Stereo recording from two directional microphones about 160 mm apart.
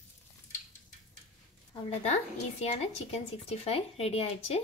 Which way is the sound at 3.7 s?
40° left (ahead or behind).